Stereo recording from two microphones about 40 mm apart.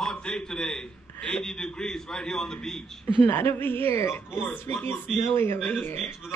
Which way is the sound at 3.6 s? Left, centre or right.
Left.